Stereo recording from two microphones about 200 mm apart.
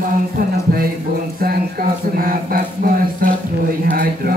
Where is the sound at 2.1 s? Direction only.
45° right (ahead or behind).